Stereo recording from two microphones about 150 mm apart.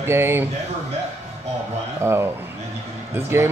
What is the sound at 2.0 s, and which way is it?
Speech, 15° right (ahead or behind).